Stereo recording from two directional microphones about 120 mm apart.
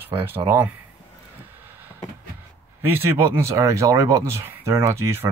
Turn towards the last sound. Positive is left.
turn(degrees=-20)  # may be behind; listen again after turning